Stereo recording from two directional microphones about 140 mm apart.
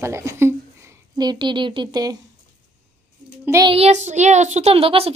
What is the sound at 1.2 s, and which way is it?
Speech, 30° right (ahead or behind).